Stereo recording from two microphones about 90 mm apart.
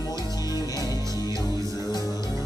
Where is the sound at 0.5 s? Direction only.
45° left (ahead or behind).